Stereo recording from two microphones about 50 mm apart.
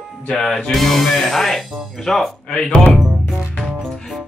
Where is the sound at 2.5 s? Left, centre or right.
Centre.